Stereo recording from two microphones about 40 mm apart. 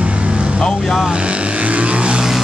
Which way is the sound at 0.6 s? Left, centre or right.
Centre.